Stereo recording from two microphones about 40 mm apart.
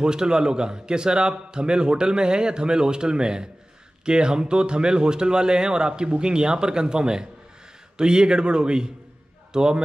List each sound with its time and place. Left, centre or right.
0.0 s a man's voice: centre